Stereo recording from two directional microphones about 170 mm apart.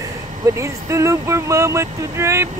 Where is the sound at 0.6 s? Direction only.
15° right (ahead or behind).